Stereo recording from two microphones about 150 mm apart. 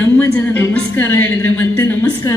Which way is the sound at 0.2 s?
10° left (ahead or behind).